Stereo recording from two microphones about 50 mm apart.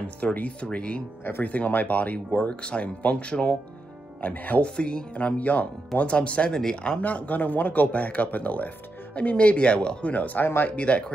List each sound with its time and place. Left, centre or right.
0.0 s speech: left
4.2 s speech: left
4.6 s speech: centre
7.0 s speech: left
10.1 s speech: left